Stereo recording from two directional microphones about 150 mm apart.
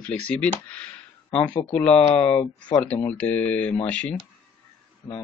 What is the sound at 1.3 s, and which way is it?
Speech, 40° left (ahead or behind).